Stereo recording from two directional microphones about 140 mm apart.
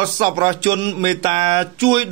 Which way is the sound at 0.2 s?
35° right (ahead or behind).